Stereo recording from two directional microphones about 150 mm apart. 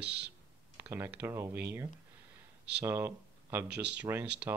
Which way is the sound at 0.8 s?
15° right (ahead or behind).